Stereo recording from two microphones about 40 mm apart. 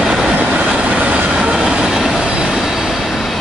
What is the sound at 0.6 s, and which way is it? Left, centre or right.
Train, right.